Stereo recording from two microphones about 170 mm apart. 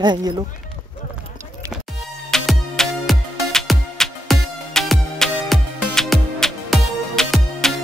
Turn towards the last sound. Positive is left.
turn(degrees=0)  # may be behind; listen again after turning